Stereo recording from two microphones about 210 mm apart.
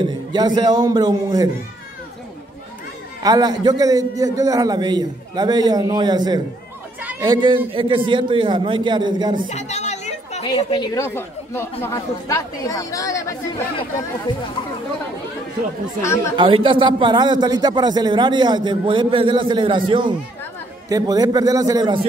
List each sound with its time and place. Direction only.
0.0 s a sound: 20° right (ahead or behind)
0.6 s a man's voice: 20° right (ahead or behind)
3.2 s a man's voice: 20° right (ahead or behind)
9.5 s chatter: 30° left (ahead or behind)
10.4 s speech: 20° left (ahead or behind)
16.3 s a man's voice: 25° right (ahead or behind)